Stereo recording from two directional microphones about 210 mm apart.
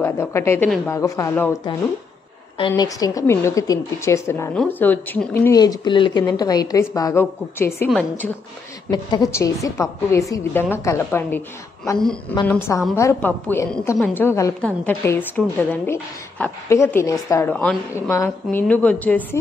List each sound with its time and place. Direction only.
0.0 s a woman's voice: 10° left (ahead or behind)
8.9 s a woman's voice: 20° left (ahead or behind)